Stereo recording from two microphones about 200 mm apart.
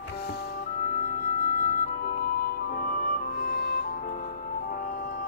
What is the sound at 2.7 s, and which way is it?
Music, 45° left (ahead or behind).